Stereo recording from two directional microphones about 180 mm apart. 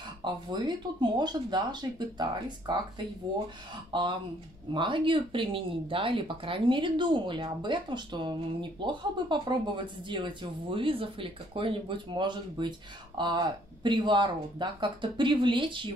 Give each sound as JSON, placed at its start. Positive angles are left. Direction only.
{"t": 0.2, "sound": "speech", "side_deg": -25}
{"t": 3.9, "sound": "speech", "side_deg": -25}